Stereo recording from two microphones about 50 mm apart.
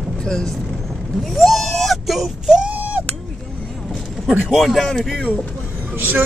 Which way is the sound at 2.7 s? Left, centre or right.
Right.